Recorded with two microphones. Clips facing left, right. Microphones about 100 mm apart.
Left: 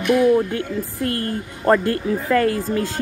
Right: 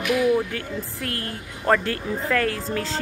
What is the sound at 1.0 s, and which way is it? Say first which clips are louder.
Speech: left 9 dB; 65° right (ahead or behind).